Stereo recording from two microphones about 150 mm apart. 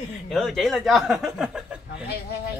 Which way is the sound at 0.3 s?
Centre (ahead or behind).